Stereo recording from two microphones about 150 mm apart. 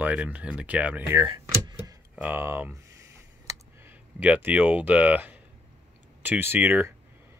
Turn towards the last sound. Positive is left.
turn(degrees=-15)  # may be behind; listen again after turning